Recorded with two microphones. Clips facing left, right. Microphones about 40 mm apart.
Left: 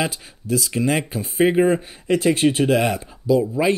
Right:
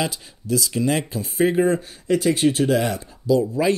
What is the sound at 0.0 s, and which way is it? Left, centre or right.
Speech, left.